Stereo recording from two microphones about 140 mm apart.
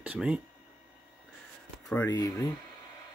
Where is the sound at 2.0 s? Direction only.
25° left (ahead or behind).